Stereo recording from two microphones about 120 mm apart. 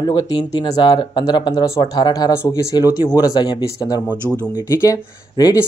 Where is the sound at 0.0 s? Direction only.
35° left (ahead or behind).